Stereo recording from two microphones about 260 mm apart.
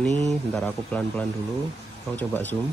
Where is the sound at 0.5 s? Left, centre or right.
Centre.